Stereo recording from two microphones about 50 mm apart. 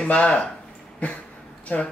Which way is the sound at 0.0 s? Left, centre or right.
Left.